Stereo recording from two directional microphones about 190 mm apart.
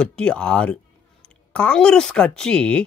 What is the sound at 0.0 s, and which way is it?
A man's voice, 5° left (ahead or behind).